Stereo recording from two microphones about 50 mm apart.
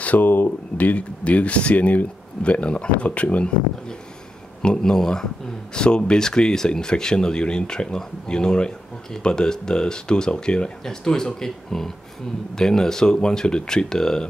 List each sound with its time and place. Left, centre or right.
0.0 s speech: left
4.6 s speech: centre